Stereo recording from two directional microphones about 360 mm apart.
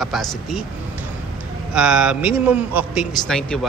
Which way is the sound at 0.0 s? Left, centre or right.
Centre.